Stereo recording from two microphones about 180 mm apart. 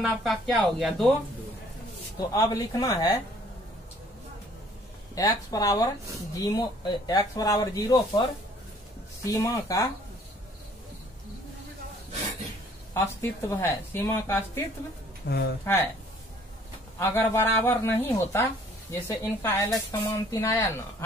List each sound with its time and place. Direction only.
0.0 s speech: centre (ahead or behind)
2.1 s speech: 20° left (ahead or behind)
5.1 s speech: 20° left (ahead or behind)
12.9 s speech: 15° left (ahead or behind)
15.2 s speech: 65° left (ahead or behind)
15.6 s speech: 10° left (ahead or behind)
17.0 s speech: 10° left (ahead or behind)